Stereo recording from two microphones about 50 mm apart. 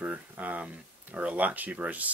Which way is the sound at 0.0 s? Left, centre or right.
Right.